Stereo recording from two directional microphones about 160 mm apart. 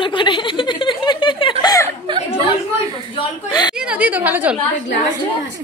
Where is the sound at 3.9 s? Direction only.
10° right (ahead or behind).